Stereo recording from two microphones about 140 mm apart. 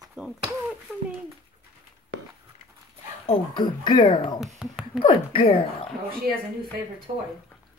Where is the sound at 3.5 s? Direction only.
35° left (ahead or behind).